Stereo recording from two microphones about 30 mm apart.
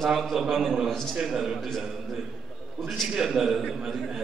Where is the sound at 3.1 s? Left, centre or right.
Centre.